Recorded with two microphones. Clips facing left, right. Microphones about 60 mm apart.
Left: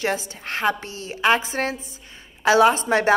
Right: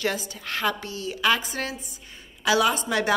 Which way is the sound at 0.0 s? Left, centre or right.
Left.